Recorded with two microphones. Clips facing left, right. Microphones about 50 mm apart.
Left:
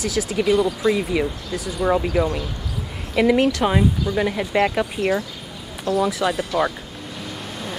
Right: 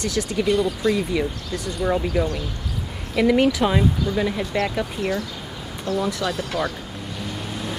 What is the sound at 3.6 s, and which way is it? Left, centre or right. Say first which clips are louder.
Speech: left 1 dB; centre.